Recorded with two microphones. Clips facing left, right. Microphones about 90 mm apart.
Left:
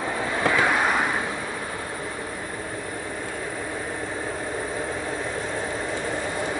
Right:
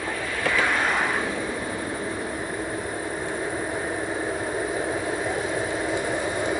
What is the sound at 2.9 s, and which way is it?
Vehicle, 20° right (ahead or behind).